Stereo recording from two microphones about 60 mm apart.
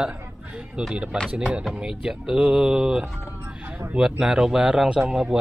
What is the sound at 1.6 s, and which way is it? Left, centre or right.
Speech, centre.